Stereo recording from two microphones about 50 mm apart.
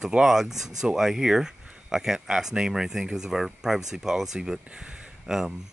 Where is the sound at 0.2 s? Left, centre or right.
Centre.